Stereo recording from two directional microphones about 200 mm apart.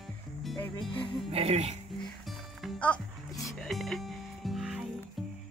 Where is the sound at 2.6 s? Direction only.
5° left (ahead or behind).